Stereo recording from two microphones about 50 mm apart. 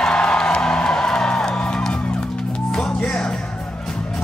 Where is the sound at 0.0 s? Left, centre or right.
Centre.